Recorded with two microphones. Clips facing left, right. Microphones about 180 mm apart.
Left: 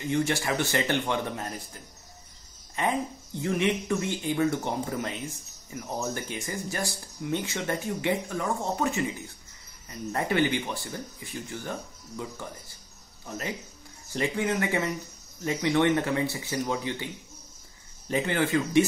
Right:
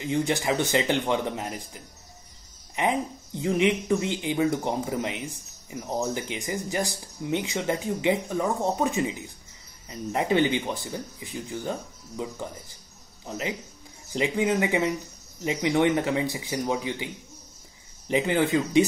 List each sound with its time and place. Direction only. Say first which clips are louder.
0.0 s speech: right 1 dB; 15° right (ahead or behind)